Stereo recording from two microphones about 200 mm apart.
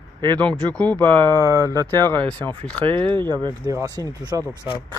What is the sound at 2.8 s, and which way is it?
Speech, 25° right (ahead or behind).